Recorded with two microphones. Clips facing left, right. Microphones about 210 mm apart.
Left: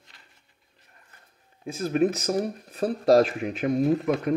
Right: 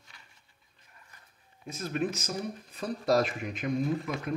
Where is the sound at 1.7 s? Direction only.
35° left (ahead or behind).